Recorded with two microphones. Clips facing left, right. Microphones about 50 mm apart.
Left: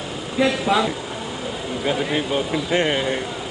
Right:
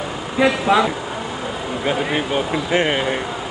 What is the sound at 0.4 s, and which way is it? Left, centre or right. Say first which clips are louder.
Speech: right 3 dB; centre.